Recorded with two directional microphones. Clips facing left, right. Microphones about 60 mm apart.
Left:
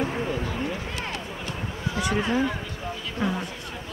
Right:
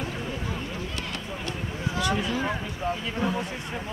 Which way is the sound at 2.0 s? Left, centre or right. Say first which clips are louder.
Left 1 dB; left.